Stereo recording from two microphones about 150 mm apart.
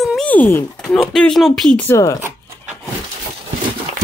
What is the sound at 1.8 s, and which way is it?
Speech, 20° left (ahead or behind).